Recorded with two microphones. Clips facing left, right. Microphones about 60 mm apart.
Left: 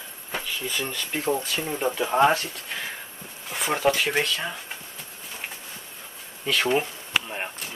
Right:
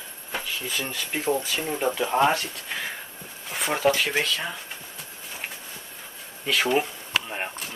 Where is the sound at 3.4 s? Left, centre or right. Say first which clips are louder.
Even; centre.